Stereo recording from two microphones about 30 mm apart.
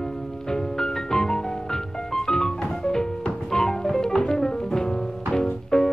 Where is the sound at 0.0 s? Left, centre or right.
Left.